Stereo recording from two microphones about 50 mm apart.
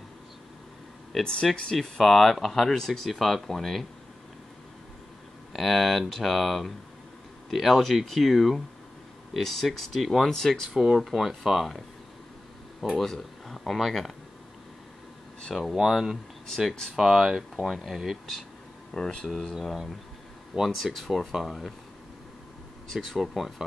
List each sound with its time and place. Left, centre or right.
1.2 s speech: centre
1.8 s speech: centre
5.5 s speech: centre
12.9 s speech: centre
15.7 s speech: centre
16.4 s speech: centre
16.9 s speech: centre
22.9 s speech: centre